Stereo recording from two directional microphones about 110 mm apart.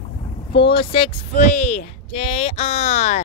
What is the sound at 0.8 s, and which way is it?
Speech, 55° left (ahead or behind).